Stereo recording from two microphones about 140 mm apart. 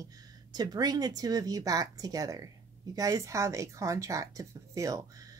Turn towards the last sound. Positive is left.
turn(degrees=-25)  # may be behind; listen again after turning